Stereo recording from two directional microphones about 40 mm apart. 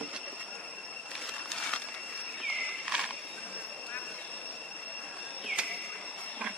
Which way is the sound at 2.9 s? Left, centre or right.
Right.